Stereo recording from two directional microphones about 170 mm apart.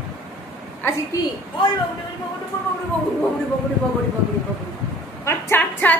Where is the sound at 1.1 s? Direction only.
20° left (ahead or behind).